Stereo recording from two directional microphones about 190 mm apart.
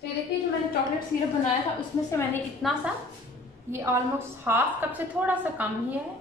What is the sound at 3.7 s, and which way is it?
A woman's voice, 15° right (ahead or behind).